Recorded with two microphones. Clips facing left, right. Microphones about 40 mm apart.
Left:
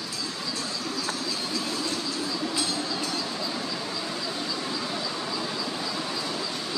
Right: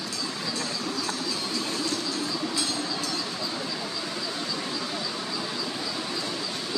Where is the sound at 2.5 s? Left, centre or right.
Centre.